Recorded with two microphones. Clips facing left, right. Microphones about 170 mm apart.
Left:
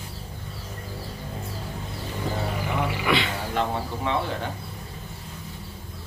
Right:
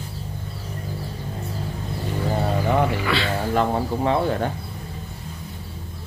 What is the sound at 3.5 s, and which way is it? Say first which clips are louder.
Speech: right 5 dB; 45° right (ahead or behind).